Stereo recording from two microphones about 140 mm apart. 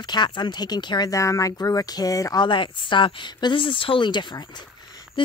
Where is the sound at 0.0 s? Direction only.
30° left (ahead or behind).